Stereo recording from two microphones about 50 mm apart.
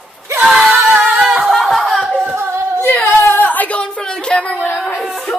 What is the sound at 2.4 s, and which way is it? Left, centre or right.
Singing, right.